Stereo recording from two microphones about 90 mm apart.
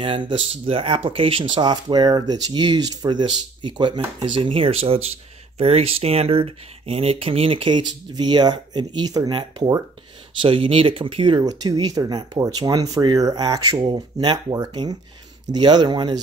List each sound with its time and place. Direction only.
0.0 s speech: 70° right (ahead or behind)
10.4 s speech: 75° right (ahead or behind); by 16.2 s 55° right (ahead or behind)